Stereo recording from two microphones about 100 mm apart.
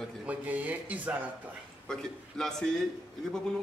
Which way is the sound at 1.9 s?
5° left (ahead or behind).